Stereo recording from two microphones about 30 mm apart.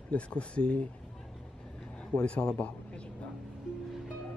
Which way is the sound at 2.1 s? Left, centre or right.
Left.